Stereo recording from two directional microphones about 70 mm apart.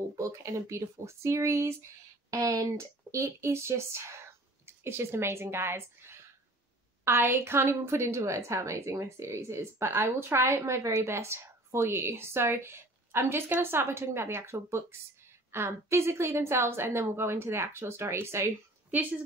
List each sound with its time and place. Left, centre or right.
0.1 s a woman's voice: right
2.3 s a woman's voice: right